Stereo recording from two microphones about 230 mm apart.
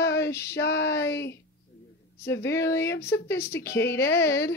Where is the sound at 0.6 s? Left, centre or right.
Left.